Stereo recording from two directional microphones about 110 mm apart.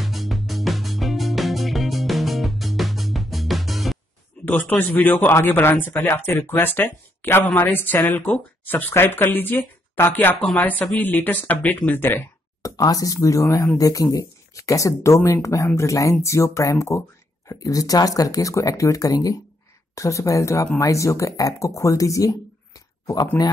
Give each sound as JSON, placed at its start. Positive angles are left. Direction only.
{"t": 0.0, "sound": "music", "side_deg": 0}
{"t": 4.5, "sound": "a woman's voice", "side_deg": 15}
{"t": 12.6, "sound": "speech", "side_deg": 35}